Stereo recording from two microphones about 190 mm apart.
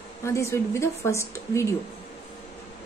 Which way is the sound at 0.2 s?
15° left (ahead or behind).